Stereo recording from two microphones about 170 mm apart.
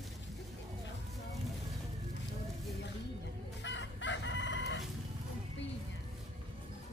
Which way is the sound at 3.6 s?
90° left.